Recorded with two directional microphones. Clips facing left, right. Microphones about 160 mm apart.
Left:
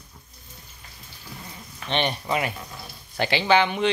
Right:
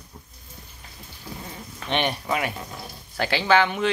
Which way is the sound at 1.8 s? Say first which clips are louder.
Even; 10° right (ahead or behind).